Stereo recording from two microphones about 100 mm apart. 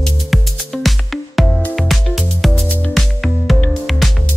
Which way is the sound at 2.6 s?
15° left (ahead or behind).